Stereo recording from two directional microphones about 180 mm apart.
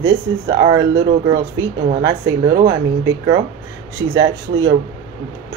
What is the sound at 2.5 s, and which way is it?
Speech, 60° right (ahead or behind).